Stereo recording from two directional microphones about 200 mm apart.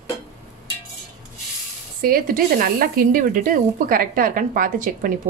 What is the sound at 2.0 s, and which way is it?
Speech, 45° right (ahead or behind).